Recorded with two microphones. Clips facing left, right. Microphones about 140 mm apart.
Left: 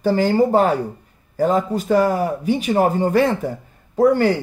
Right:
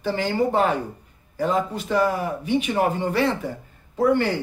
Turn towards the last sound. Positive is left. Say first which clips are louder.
# left 5 dB
turn(degrees=40)  # may be behind; listen again after turning